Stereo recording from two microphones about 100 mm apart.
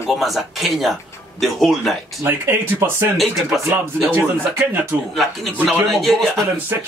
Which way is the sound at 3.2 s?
Centre (ahead or behind).